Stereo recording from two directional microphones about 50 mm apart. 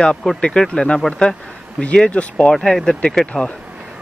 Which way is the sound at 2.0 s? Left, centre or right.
Left.